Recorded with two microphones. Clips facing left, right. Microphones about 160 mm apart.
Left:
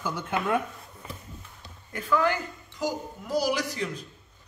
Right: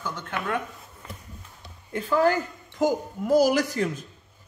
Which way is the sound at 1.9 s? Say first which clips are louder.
Right 4 dB; 30° right (ahead or behind).